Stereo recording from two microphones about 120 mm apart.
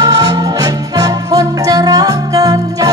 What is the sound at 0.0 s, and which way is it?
Music, 35° right (ahead or behind).